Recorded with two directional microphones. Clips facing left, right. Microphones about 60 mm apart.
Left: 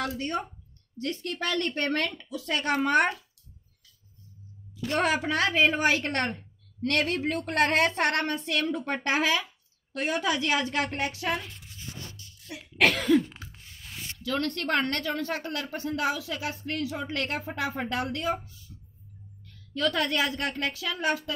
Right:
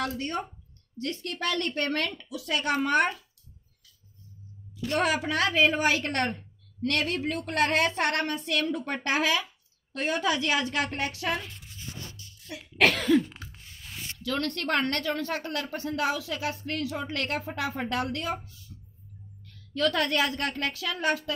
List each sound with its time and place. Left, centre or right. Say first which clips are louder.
0.9 s a woman's voice: left 1 dB; left
2.2 s a woman's voice: even; left
4.7 s a woman's voice: even; left
6.8 s a woman's voice: left 1 dB; left
8.5 s a woman's voice: even; left
12.4 s cough: even; centre
14.2 s a woman's voice: left 1 dB; centre